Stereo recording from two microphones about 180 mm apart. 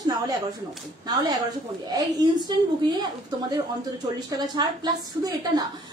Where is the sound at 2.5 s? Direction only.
20° right (ahead or behind).